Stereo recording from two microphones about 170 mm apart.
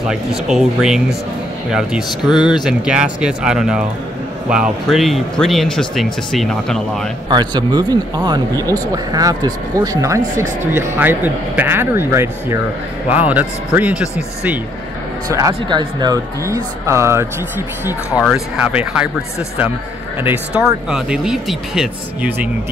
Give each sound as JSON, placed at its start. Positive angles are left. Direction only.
{"t": 0.1, "sound": "speech", "side_deg": -5}
{"t": 7.2, "sound": "speech", "side_deg": -25}
{"t": 15.2, "sound": "speech", "side_deg": -20}
{"t": 20.2, "sound": "speech", "side_deg": -5}